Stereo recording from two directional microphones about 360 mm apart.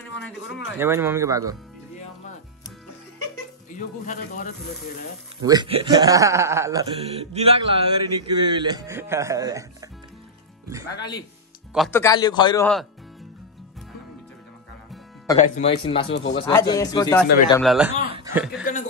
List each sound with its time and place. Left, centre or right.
0.3 s speech: centre
3.7 s speech: left
5.4 s speech: centre
11.0 s speech: centre
15.3 s speech: centre
18.1 s chuckle: centre